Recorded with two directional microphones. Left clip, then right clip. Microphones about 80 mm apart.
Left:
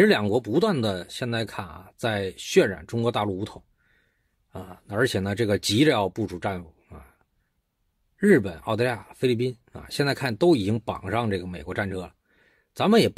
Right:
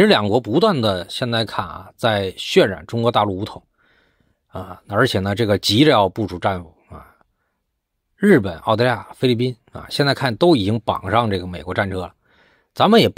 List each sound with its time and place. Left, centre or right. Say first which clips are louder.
0.3 s speech: right 7 dB; right
4.5 s speech: right 8 dB; right
8.2 s speech: right 5 dB; right